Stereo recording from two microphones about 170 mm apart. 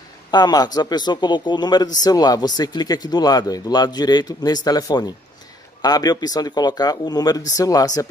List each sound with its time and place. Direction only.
0.3 s speech: 25° left (ahead or behind)